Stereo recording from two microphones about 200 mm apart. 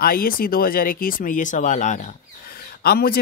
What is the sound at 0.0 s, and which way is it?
Speech, 45° left (ahead or behind).